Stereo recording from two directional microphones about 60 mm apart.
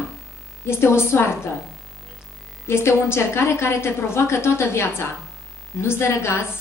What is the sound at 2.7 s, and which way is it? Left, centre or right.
A woman's voice, left.